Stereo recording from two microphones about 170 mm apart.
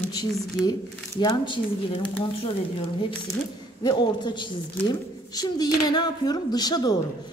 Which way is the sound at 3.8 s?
25° left (ahead or behind).